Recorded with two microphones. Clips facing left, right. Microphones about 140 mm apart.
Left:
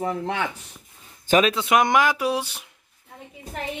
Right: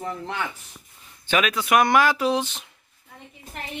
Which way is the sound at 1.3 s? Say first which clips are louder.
Left 2 dB; 30° left (ahead or behind).